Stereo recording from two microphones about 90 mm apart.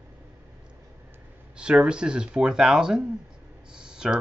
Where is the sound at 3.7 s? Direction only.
10° right (ahead or behind).